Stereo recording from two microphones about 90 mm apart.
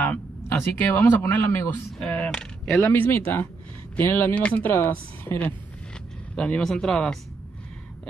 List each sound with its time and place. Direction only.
0.0 s a man's voice: 20° left (ahead or behind)
2.0 s a woman's voice: 15° left (ahead or behind)